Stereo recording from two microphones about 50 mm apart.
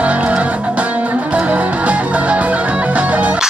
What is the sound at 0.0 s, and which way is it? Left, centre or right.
Music, right.